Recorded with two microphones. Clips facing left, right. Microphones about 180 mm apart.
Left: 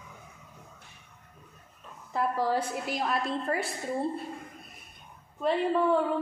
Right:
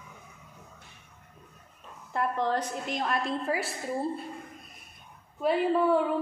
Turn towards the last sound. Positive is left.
turn(degrees=-5)  # may be behind; listen again after turning